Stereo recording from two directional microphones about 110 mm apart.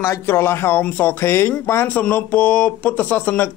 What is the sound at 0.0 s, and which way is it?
Speech, 25° left (ahead or behind).